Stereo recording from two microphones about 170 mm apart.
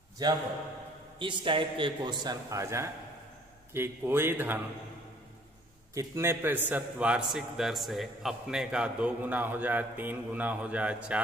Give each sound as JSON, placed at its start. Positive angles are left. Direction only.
{"t": 0.2, "sound": "a man's voice", "side_deg": -20}
{"t": 5.9, "sound": "a man's voice", "side_deg": -15}